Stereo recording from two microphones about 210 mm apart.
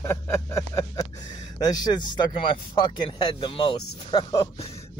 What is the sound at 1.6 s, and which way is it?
Speech, 20° left (ahead or behind).